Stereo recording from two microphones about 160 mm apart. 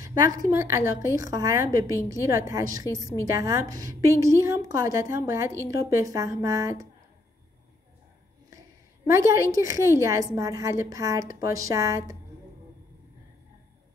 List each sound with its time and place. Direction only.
0.0 s a woman's voice: 20° right (ahead or behind)
8.5 s a sound: 20° right (ahead or behind)
9.6 s a woman's voice: 20° right (ahead or behind)